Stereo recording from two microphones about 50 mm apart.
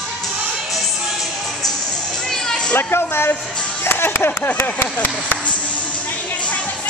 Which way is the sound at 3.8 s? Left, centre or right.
Left.